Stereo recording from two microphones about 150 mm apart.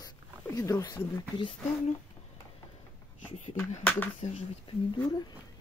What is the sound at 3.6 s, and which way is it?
Speech, 10° left (ahead or behind).